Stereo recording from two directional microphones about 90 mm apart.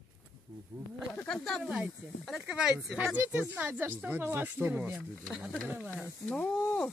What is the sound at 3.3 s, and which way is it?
Speech, 20° right (ahead or behind).